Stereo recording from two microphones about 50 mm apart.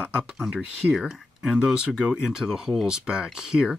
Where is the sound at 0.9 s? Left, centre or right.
Centre.